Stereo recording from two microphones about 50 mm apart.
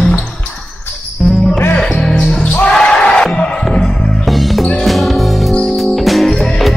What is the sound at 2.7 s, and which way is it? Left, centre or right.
Crowd, centre.